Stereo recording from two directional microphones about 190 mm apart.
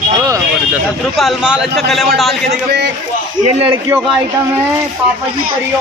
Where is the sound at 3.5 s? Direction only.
30° right (ahead or behind).